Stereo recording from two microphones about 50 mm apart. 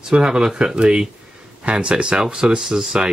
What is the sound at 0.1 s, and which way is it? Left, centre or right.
Speech, centre.